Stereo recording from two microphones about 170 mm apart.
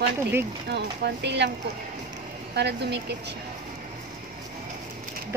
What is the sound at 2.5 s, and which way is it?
Speech, 80° right.